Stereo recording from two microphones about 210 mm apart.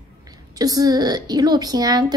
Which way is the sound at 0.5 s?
15° right (ahead or behind).